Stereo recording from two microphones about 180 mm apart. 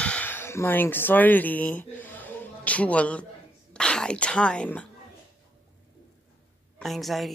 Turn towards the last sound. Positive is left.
turn(degrees=0)  # may be behind; listen again after turning